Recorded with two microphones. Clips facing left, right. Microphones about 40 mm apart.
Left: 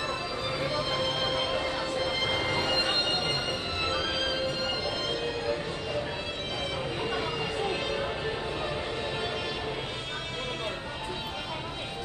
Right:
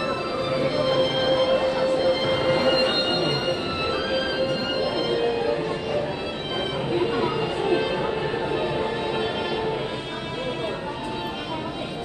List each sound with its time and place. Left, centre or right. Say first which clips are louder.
0.7 s music: right 9 dB; right
1.6 s music: right 9 dB; right